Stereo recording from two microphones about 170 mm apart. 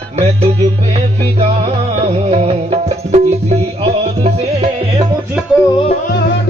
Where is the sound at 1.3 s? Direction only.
40° right (ahead or behind).